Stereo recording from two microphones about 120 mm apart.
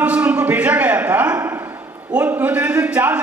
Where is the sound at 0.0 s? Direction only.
10° right (ahead or behind).